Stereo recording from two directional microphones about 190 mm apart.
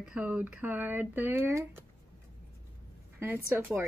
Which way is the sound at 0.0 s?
5° right (ahead or behind).